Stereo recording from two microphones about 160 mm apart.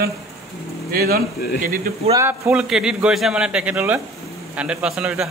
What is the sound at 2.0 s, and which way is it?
A man's voice, 15° right (ahead or behind).